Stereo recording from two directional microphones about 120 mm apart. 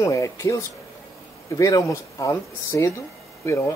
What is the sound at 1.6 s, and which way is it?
A man's voice, 30° left (ahead or behind).